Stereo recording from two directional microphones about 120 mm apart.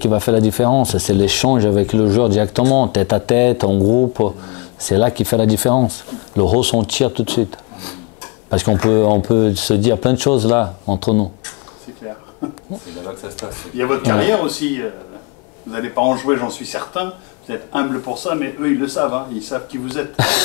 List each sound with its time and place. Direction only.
0.0 s speech: 10° left (ahead or behind)
3.8 s speech: 25° left (ahead or behind)
4.8 s speech: 10° left (ahead or behind)
13.4 s speech: 15° left (ahead or behind)